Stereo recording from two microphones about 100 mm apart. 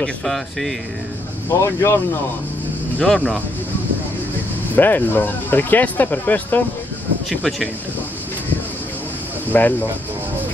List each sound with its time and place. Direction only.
0.0 s speech: 5° left (ahead or behind)
1.5 s speech: 30° left (ahead or behind)
3.0 s speech: 10° left (ahead or behind)
4.7 s speech: 20° left (ahead or behind)
7.2 s speech: centre (ahead or behind)
9.5 s speech: 20° left (ahead or behind)